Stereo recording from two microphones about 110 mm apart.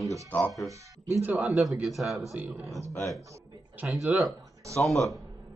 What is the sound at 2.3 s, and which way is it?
Speech, 15° right (ahead or behind).